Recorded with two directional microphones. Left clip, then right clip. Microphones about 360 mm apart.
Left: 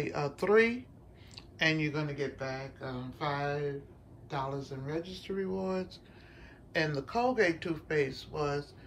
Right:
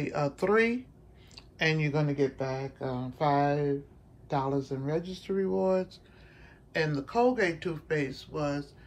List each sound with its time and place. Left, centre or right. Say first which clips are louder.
0.0 s speech: right 3 dB; centre